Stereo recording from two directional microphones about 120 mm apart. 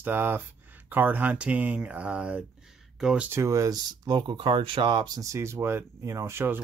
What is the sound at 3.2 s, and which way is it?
Speech, 20° right (ahead or behind).